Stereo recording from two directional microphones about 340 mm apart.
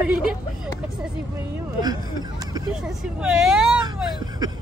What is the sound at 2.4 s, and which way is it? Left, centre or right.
Vehicle, centre.